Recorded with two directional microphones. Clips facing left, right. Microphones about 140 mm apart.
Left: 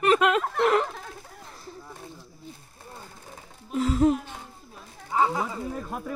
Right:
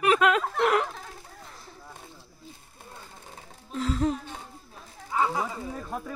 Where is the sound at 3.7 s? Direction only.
10° left (ahead or behind).